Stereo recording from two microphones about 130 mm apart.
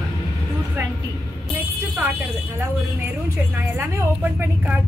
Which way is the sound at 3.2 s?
20° right (ahead or behind).